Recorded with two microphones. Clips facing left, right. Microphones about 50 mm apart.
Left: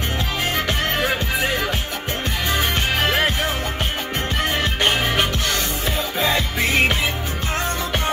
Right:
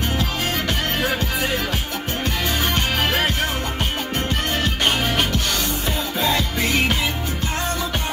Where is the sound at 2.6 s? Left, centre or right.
Centre.